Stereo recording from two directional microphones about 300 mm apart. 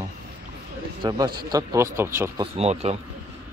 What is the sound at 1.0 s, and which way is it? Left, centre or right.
A man's voice, centre.